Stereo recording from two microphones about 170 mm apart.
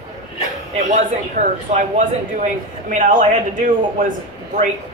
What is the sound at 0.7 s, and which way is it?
Speech, 45° right (ahead or behind).